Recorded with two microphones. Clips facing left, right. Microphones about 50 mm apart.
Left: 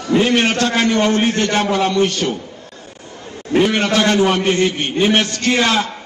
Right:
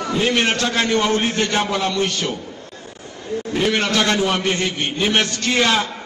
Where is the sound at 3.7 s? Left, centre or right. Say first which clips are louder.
Left 3 dB; left.